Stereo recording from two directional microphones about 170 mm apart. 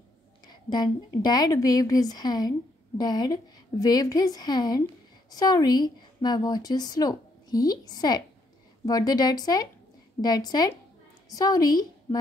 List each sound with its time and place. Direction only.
0.5 s a woman's voice: 25° left (ahead or behind)